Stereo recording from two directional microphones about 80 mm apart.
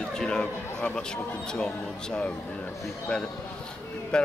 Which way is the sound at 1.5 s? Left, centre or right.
Centre.